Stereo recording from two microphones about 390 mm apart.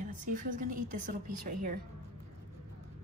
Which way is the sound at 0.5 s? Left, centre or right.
Centre.